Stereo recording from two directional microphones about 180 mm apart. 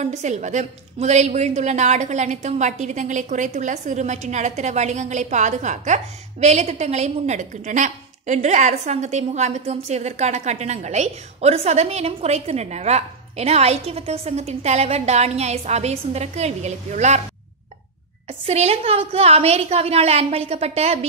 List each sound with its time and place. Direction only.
0.0 s a woman's voice: 40° right (ahead or behind)
18.4 s a woman's voice: 35° right (ahead or behind)